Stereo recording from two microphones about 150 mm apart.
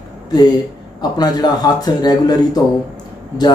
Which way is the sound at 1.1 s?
25° left (ahead or behind).